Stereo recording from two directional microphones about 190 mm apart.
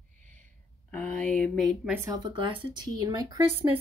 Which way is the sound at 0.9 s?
5° left (ahead or behind).